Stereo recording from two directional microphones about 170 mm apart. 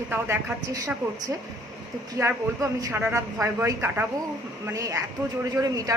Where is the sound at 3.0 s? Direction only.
15° right (ahead or behind).